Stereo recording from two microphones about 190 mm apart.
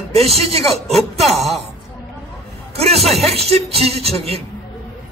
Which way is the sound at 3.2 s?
30° right (ahead or behind).